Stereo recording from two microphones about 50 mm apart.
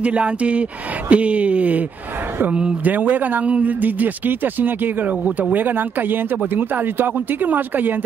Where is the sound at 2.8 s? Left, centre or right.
Right.